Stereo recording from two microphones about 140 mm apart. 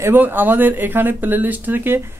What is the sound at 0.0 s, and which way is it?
Speech, 15° right (ahead or behind).